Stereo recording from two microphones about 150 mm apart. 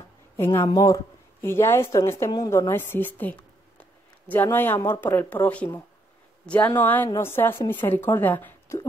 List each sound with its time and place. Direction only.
0.4 s a woman's voice: 15° left (ahead or behind)